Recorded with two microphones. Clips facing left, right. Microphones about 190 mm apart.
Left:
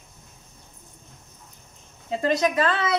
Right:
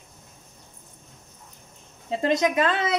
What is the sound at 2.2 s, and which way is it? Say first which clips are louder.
Speech: even; 20° right (ahead or behind).